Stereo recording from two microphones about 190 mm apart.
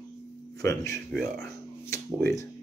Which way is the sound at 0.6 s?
15° left (ahead or behind).